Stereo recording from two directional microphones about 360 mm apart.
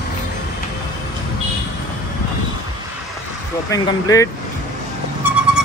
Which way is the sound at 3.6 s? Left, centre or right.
Centre.